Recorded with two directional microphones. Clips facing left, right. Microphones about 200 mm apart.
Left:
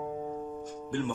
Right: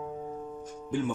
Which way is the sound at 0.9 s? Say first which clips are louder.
Right 2 dB; 5° right (ahead or behind).